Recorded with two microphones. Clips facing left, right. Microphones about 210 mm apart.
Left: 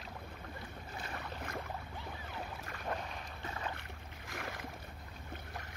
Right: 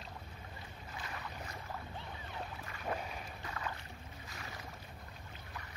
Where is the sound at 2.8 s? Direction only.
5° right (ahead or behind).